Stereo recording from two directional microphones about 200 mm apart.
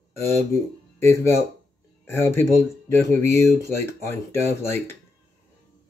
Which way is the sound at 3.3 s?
15° left (ahead or behind).